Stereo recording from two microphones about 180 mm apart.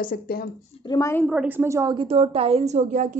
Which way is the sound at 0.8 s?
15° left (ahead or behind).